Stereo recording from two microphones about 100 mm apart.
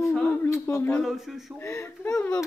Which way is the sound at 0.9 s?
Centre (ahead or behind).